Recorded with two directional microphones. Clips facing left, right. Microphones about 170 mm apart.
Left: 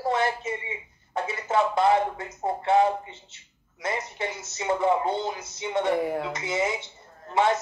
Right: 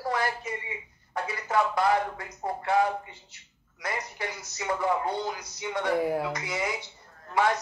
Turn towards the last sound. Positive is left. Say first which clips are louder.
# left 2 dB
turn(degrees=25)  # may be behind; listen again after turning